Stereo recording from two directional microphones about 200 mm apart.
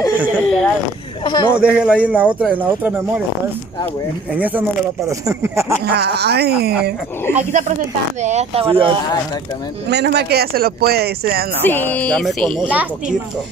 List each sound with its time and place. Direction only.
0.2 s a sound: centre (ahead or behind)
1.2 s a man's voice: 20° left (ahead or behind)
1.6 s speech: 5° right (ahead or behind)
4.3 s speech: 10° right (ahead or behind)
5.9 s speech: 55° right (ahead or behind)
7.3 s speech: 35° right (ahead or behind)
9.8 s speech: 55° right (ahead or behind)
11.6 s speech: 10° left (ahead or behind)